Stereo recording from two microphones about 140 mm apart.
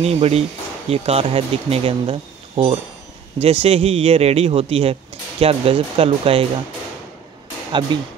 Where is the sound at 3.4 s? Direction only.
45° right (ahead or behind).